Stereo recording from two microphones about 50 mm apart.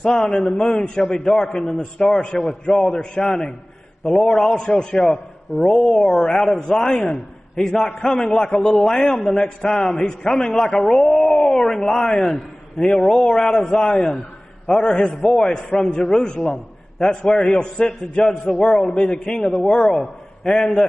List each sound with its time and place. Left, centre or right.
0.0 s a man's voice: centre
4.3 s a man's voice: centre
4.6 s a man's voice: centre
20.5 s a man's voice: centre